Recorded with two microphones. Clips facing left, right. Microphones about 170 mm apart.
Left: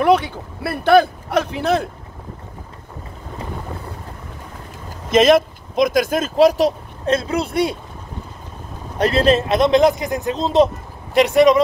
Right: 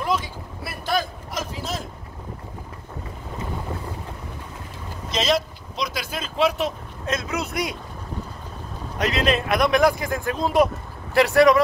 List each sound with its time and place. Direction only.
0.0 s speech: 65° left (ahead or behind)
5.1 s speech: 50° left (ahead or behind); by 7.7 s 30° left (ahead or behind)
8.9 s speech: 30° left (ahead or behind)